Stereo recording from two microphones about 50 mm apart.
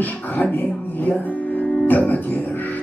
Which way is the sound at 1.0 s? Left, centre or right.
Left.